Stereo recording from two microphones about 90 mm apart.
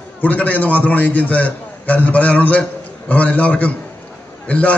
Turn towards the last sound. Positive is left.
turn(degrees=15)  # may be behind; listen again after turning